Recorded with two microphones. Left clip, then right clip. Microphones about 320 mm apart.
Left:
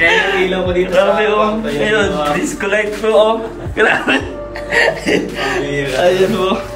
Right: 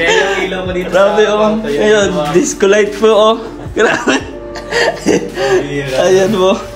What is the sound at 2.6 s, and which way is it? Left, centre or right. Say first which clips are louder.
Music: right 7 dB; centre.